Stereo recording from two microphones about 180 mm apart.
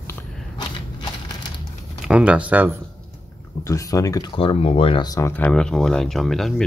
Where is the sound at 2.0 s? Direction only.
5° right (ahead or behind).